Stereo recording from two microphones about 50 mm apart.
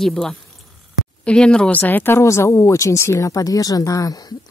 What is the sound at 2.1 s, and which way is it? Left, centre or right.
A woman's voice, left.